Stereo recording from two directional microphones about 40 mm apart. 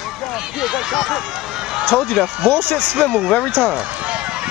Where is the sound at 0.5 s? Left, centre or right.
Centre.